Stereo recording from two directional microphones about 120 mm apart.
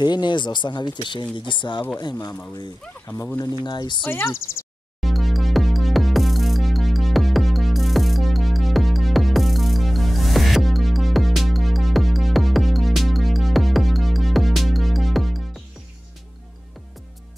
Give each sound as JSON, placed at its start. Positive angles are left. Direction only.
{"t": 0.0, "sound": "speech", "side_deg": 40}
{"t": 2.8, "sound": "speech", "side_deg": 15}
{"t": 3.3, "sound": "speech", "side_deg": 35}
{"t": 4.1, "sound": "speech", "side_deg": 20}
{"t": 5.0, "sound": "music", "side_deg": 0}